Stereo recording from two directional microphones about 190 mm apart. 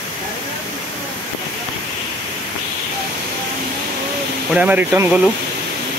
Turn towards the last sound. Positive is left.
turn(degrees=-10)  # may be behind; listen again after turning